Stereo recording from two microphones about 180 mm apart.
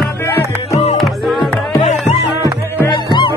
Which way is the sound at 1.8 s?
40° left (ahead or behind).